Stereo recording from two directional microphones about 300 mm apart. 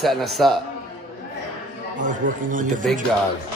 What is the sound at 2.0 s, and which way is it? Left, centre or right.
Speech, right.